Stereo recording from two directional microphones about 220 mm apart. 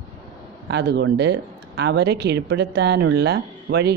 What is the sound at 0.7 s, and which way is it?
Speech, 50° right (ahead or behind).